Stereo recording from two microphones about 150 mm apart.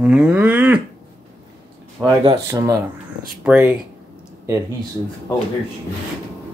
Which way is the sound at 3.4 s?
10° right (ahead or behind).